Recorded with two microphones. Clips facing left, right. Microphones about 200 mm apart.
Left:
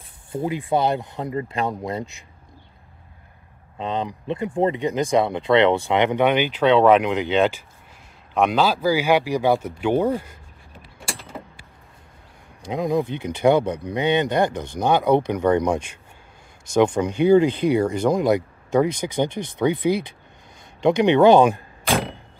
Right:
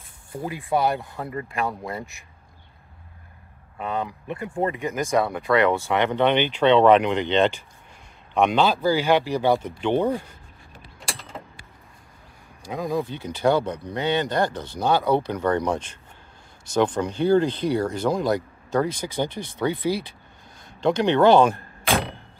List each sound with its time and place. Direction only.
0.3 s speech: 20° left (ahead or behind)
3.7 s speech: 20° left (ahead or behind)
4.6 s speech: 30° left (ahead or behind)
4.9 s speech: 15° left (ahead or behind)
6.3 s speech: 5° left (ahead or behind)
12.6 s speech: 15° left (ahead or behind)
21.8 s vehicle: centre (ahead or behind)